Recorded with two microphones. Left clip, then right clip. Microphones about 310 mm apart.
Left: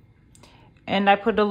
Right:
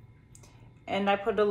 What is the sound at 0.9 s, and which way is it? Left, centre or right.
Speech, left.